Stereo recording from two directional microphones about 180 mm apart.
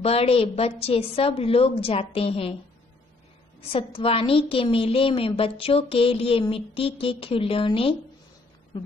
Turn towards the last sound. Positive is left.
turn(degrees=30)  # may be behind; listen again after turning